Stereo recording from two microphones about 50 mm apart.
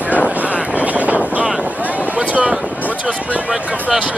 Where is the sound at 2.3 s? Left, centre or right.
Right.